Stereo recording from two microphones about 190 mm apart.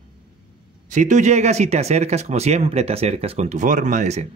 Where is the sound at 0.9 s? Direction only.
40° right (ahead or behind).